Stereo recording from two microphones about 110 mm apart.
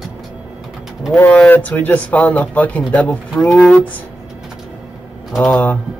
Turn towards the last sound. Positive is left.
turn(degrees=15)  # may be behind; listen again after turning